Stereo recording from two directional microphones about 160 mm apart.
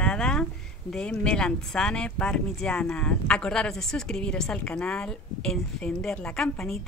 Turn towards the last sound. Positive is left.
turn(degrees=5)  # may be behind; listen again after turning